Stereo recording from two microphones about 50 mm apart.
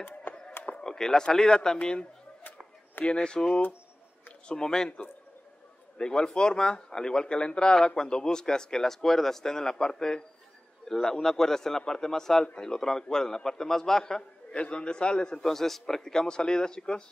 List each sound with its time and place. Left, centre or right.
0.3 s a sound: left
0.7 s a man's voice: centre
3.1 s a man's voice: centre